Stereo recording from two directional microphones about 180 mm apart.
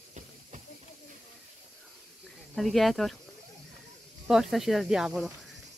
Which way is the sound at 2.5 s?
Centre (ahead or behind).